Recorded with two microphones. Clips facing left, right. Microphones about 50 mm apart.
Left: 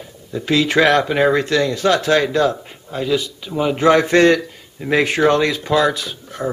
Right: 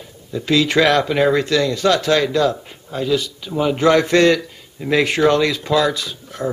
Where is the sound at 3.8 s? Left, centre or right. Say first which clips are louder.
Left 1 dB; centre.